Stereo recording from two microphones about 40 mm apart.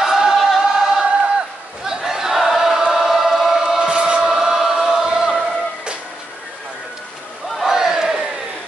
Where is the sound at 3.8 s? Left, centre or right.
Right.